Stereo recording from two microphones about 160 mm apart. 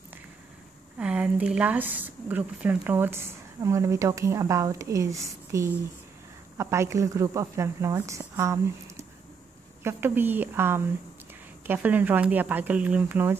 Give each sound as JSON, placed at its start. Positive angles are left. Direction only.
{"t": 0.9, "sound": "a woman's voice", "side_deg": -5}